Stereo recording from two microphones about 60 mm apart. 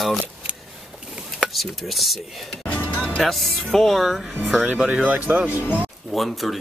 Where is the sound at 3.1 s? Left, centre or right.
Centre.